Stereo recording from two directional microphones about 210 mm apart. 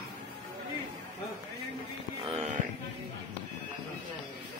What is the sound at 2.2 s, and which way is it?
Mantra, 30° right (ahead or behind).